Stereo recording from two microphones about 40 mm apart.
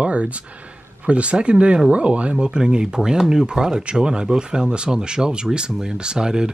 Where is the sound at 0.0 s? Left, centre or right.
Right.